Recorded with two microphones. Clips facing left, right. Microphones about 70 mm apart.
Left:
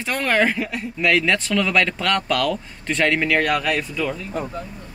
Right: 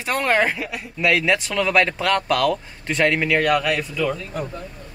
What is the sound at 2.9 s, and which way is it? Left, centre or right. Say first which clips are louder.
Speech: even; centre.